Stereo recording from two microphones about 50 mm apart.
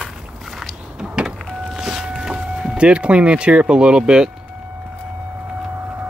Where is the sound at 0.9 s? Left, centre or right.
Centre.